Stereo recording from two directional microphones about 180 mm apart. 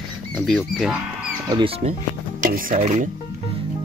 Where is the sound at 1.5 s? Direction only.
30° right (ahead or behind).